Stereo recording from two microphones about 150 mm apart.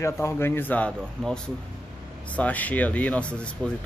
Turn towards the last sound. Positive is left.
turn(degrees=10)  # may be behind; listen again after turning